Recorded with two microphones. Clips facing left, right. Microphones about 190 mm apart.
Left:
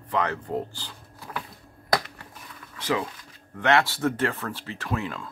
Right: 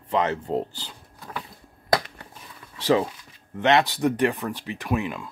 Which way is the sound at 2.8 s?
35° right (ahead or behind).